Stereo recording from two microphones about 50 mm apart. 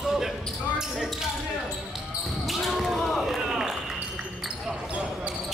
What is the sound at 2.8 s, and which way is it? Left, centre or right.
Speech, centre.